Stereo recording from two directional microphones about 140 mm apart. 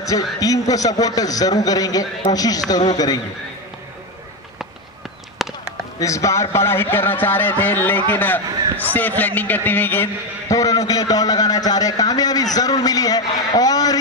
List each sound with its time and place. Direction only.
0.0 s a man's voice: 25° left (ahead or behind)
5.4 s a sound: centre (ahead or behind)
5.9 s a man's voice: 20° left (ahead or behind)
10.5 s a man's voice: 25° left (ahead or behind)